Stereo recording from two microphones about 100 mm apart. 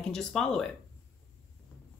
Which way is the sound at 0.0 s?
5° left (ahead or behind).